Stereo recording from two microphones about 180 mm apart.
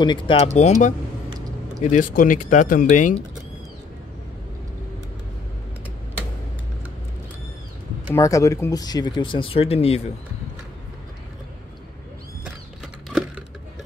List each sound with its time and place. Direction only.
0.0 s speech: 25° left (ahead or behind)
0.6 s speech: 40° left (ahead or behind)
8.1 s speech: 15° left (ahead or behind); by 10.0 s 35° left (ahead or behind)